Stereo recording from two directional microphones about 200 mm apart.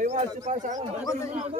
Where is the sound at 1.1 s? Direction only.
15° left (ahead or behind).